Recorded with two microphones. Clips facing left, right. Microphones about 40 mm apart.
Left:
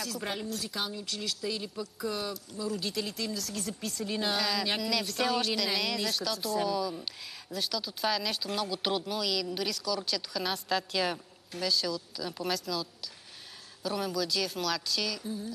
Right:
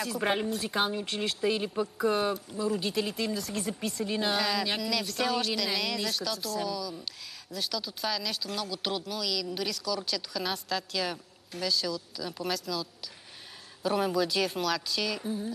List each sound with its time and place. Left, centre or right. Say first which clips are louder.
0.2 s speech: right 6 dB; right
2.5 s speech: right 4 dB; centre
13.8 s speech: right 5 dB; right
15.1 s speech: right 4 dB; right